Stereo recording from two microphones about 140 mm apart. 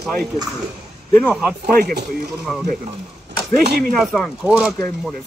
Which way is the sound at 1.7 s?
90° right.